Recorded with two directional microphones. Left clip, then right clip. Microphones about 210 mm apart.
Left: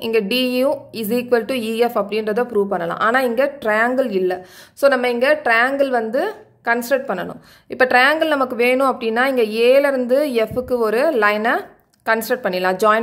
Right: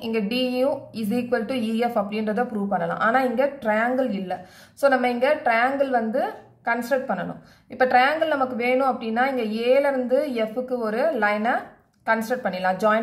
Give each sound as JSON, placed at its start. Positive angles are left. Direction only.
{"t": 0.0, "sound": "a woman's voice", "side_deg": 45}